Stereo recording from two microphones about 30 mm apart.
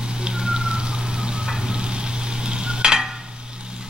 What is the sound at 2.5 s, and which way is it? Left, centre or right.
Stir, right.